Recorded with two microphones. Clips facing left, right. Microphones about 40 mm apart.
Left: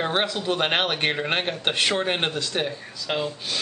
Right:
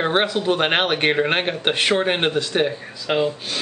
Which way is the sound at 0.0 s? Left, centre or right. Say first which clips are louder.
Right 5 dB; centre.